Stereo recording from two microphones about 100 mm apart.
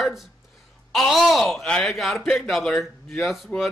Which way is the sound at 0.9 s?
Centre (ahead or behind).